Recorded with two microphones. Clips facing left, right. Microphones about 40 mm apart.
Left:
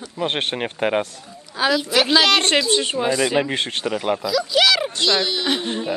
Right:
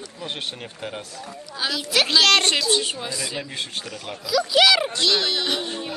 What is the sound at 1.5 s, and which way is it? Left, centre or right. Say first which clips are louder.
Speech: left 5 dB; centre.